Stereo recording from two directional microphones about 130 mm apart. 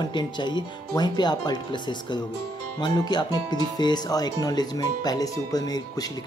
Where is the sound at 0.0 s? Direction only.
35° left (ahead or behind).